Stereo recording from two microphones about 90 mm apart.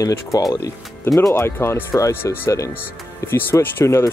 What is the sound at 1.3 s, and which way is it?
Speech, 30° left (ahead or behind).